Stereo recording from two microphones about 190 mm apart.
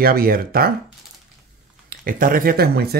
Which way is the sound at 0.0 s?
50° right (ahead or behind).